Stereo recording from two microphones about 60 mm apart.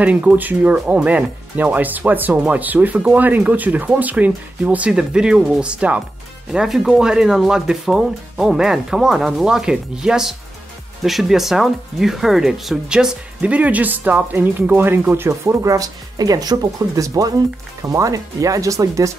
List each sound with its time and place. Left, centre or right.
0.0 s speech: right
6.5 s a woman's voice: centre; by 19.1 s right